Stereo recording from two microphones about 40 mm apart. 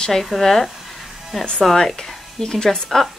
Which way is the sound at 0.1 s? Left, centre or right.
Centre.